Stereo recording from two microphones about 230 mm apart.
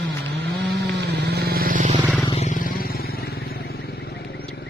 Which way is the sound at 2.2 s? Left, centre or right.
Left.